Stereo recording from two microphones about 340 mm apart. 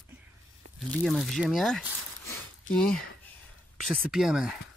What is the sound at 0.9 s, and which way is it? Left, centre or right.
Speech, centre.